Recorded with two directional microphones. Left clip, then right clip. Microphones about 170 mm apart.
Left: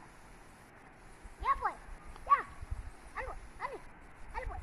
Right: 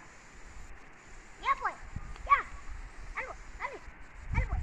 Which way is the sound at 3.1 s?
20° right (ahead or behind).